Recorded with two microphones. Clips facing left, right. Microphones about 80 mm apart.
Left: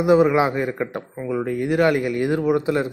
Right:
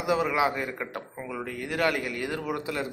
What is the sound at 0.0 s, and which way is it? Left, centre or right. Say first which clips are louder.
Speech: left 9 dB; left.